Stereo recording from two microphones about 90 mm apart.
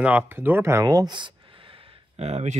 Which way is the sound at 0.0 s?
20° right (ahead or behind).